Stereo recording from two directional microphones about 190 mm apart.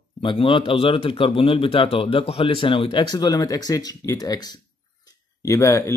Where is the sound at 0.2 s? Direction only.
25° left (ahead or behind).